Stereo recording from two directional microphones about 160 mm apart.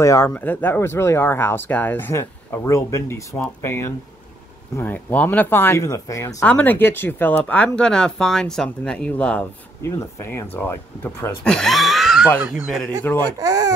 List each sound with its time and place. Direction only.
0.0 s speech: 20° left (ahead or behind)
11.4 s speech: 5° left (ahead or behind)
12.8 s speech: 10° left (ahead or behind)
13.4 s speech: 20° right (ahead or behind)